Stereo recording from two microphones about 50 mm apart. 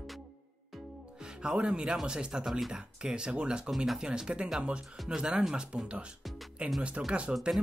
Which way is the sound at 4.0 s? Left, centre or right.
Centre.